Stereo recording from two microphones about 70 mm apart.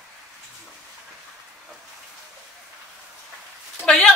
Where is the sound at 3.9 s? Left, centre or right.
Centre.